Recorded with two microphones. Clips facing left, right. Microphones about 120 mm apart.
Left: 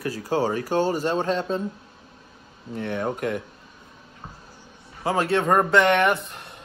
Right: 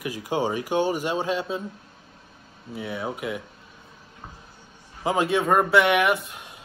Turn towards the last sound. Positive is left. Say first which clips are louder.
# even
turn(degrees=-5)  # may be behind; listen again after turning